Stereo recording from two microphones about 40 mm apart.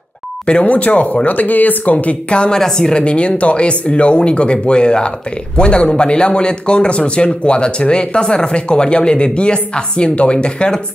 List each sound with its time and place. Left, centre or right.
0.7 s speech: left
2.2 s speech: left
2.5 s speech: centre